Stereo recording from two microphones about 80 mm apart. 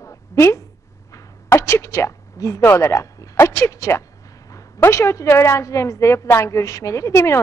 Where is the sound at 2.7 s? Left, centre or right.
Left.